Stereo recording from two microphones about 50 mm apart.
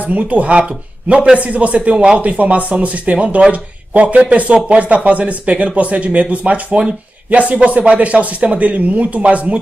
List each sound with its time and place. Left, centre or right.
0.0 s speech: right